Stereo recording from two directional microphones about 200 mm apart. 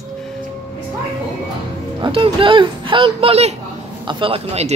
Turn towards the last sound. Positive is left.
turn(degrees=-30)  # may be behind; listen again after turning